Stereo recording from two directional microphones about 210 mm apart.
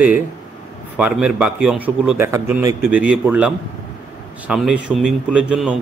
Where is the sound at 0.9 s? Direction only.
5° right (ahead or behind).